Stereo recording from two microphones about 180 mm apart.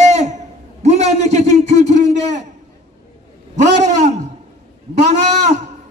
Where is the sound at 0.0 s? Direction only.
40° right (ahead or behind).